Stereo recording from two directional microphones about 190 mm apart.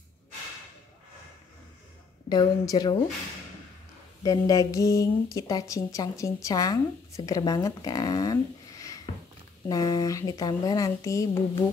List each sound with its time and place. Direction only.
2.2 s a woman's voice: 20° left (ahead or behind)
4.2 s a woman's voice: 20° left (ahead or behind)